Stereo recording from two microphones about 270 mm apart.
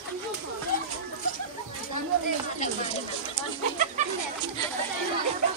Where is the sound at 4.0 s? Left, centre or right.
Right.